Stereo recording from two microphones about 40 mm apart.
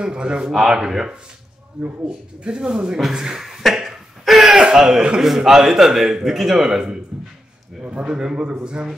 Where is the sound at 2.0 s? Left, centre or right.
Right.